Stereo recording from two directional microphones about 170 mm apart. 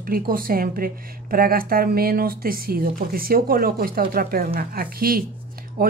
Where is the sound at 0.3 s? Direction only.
55° right (ahead or behind).